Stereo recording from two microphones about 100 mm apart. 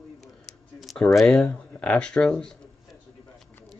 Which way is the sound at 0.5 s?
Centre (ahead or behind).